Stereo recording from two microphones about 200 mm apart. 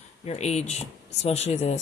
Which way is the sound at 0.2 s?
35° left (ahead or behind).